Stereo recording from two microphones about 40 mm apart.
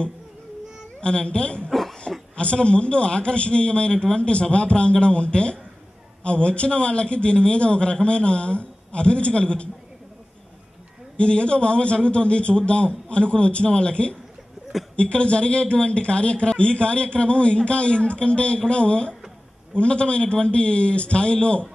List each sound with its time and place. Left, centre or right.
1.0 s a man's voice: left
1.7 s throat clearing: centre
2.3 s a man's voice: left
11.1 s a man's voice: left